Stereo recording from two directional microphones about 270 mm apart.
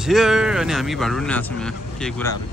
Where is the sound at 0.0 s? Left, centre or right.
Centre.